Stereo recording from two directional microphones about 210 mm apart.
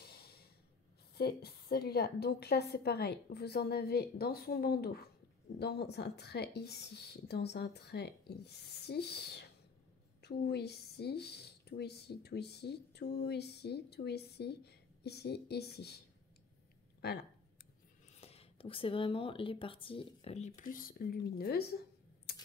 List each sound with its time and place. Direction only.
0.0 s a sound: 50° left (ahead or behind)
1.1 s speech: 50° left (ahead or behind)
17.0 s speech: 50° left (ahead or behind)
18.1 s speech: 30° left (ahead or behind); by 21.7 s 45° left (ahead or behind)